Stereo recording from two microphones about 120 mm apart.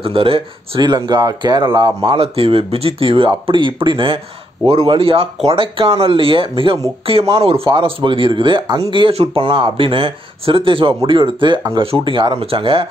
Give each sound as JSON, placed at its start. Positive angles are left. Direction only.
{"t": 0.0, "sound": "speech", "side_deg": -50}
{"t": 8.9, "sound": "speech", "side_deg": -50}